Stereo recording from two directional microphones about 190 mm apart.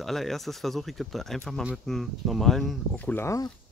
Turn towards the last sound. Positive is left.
turn(degrees=15)  # may be behind; listen again after turning